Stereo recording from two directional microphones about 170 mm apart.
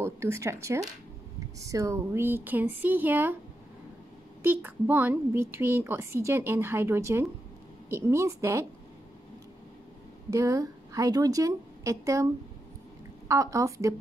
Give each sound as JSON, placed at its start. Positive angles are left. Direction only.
{"t": 0.0, "sound": "a woman's voice", "side_deg": -15}
{"t": 4.4, "sound": "a woman's voice", "side_deg": -10}
{"t": 10.3, "sound": "a woman's voice", "side_deg": -20}
{"t": 13.3, "sound": "a woman's voice", "side_deg": -20}